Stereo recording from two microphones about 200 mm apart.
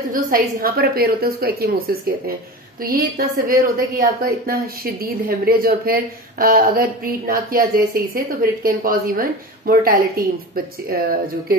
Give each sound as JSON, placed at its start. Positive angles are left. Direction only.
{"t": 0.1, "sound": "a woman's voice", "side_deg": -45}